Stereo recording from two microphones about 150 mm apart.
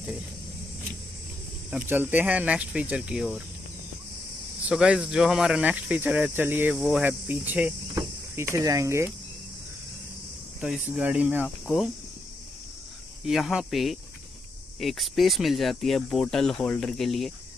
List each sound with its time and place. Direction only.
1.7 s speech: 10° right (ahead or behind)
4.6 s speech: 5° right (ahead or behind)
10.6 s speech: 5° right (ahead or behind)
11.4 s cricket: centre (ahead or behind)
13.2 s speech: 5° right (ahead or behind)